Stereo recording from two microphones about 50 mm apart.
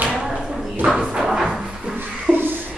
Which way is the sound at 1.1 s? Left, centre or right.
Centre.